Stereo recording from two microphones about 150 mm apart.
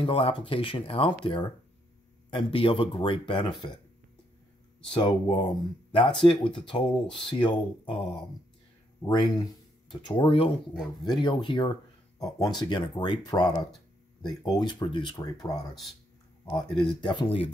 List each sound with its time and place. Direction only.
0.0 s speech: 35° left (ahead or behind)
4.9 s speech: 30° left (ahead or behind)
10.7 s speech: centre (ahead or behind)
11.2 s speech: 30° left (ahead or behind)
16.4 s speech: 30° left (ahead or behind)